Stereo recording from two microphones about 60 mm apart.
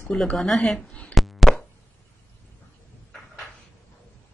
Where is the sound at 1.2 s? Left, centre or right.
Centre.